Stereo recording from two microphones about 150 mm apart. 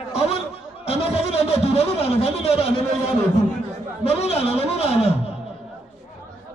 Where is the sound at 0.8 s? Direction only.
40° left (ahead or behind).